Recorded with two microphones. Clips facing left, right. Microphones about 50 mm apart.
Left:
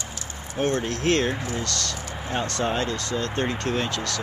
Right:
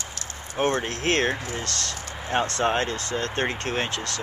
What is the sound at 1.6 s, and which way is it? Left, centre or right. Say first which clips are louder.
Speech: left 2 dB; right.